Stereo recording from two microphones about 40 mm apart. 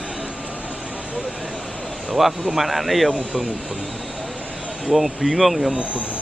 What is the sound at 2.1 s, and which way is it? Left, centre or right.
Speech, centre.